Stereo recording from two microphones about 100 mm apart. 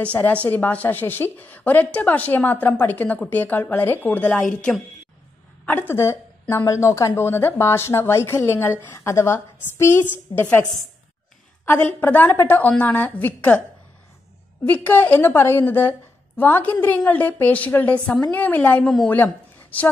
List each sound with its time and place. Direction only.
0.0 s a woman's voice: 15° left (ahead or behind)
6.5 s a woman's voice: 30° left (ahead or behind)
11.6 s a woman's voice: 20° left (ahead or behind)
14.6 s a woman's voice: 15° left (ahead or behind)